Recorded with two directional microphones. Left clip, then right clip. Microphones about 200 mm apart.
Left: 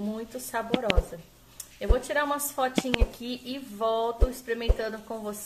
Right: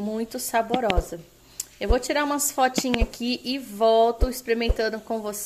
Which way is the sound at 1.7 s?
40° right (ahead or behind).